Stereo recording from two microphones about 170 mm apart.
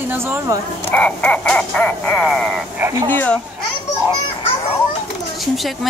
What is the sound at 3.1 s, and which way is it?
Speech, 10° left (ahead or behind).